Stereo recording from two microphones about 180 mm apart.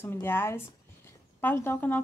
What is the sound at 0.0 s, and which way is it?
Speech, 15° left (ahead or behind).